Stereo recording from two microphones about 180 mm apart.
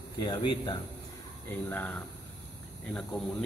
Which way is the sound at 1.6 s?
10° left (ahead or behind).